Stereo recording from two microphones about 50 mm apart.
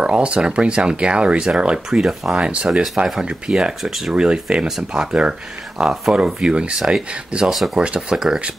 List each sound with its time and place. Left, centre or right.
0.0 s speech: right
2.4 s speech: right
7.4 s speech: centre
7.8 s speech: right